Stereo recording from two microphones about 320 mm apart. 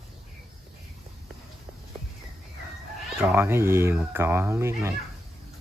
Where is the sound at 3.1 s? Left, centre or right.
Centre.